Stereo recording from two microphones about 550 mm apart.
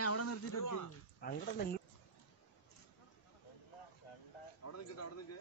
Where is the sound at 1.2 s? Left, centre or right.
Centre.